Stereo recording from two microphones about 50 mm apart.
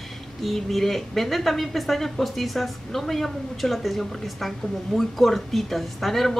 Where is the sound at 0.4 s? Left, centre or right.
Centre.